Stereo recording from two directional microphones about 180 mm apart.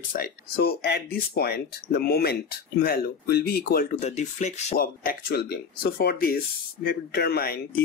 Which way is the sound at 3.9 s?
40° left (ahead or behind).